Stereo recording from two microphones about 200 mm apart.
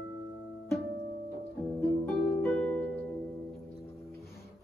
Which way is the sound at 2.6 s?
5° left (ahead or behind).